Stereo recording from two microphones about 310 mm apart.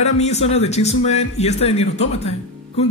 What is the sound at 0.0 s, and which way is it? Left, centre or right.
A man's voice, left.